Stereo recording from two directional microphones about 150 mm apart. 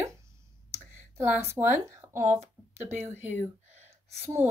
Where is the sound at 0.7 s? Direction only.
15° right (ahead or behind).